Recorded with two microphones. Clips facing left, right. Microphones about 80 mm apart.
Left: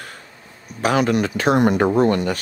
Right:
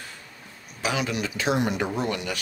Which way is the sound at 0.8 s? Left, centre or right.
Left.